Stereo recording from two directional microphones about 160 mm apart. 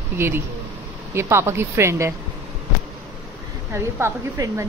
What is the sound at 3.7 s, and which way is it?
Speech, 15° right (ahead or behind).